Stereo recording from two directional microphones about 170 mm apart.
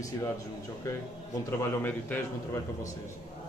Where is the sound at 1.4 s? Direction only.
10° left (ahead or behind).